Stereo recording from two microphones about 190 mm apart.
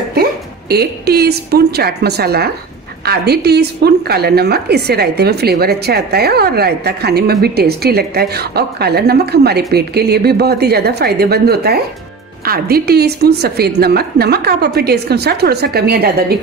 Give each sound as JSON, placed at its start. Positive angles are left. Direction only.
{"t": 0.1, "sound": "a woman's voice", "side_deg": -55}